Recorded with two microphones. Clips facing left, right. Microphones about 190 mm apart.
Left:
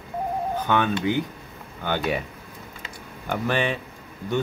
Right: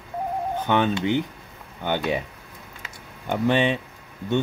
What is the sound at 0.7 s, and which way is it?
Speech, 25° right (ahead or behind).